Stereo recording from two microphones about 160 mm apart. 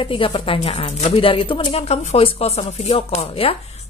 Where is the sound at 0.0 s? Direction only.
35° left (ahead or behind).